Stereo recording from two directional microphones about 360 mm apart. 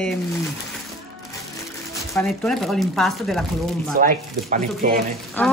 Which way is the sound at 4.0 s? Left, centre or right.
Right.